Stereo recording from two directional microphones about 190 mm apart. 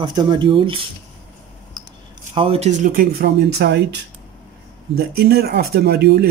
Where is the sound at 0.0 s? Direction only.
25° right (ahead or behind).